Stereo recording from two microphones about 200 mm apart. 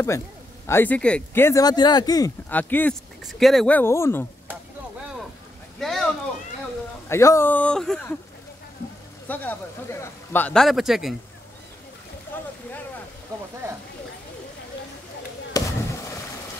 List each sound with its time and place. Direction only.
0.7 s speech: 10° left (ahead or behind)
5.8 s a sound: centre (ahead or behind)
7.1 s speech: 15° left (ahead or behind)
9.3 s a man's voice: 10° left (ahead or behind)
12.3 s a sound: 10° left (ahead or behind)
15.5 s fireworks: 15° left (ahead or behind)